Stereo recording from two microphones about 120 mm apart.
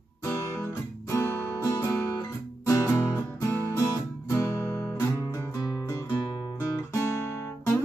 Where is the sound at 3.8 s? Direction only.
25° left (ahead or behind).